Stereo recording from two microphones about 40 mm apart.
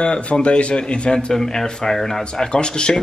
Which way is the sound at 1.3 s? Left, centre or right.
Centre.